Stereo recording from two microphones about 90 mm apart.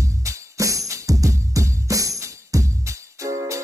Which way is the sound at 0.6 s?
35° right (ahead or behind).